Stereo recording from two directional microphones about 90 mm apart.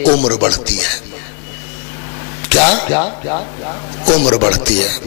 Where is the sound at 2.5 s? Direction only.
15° left (ahead or behind).